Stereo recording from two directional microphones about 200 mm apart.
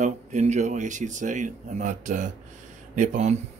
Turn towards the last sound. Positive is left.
turn(degrees=-35)  # may be behind; listen again after turning